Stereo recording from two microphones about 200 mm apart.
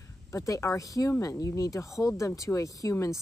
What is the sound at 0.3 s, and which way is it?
Speech, 15° left (ahead or behind).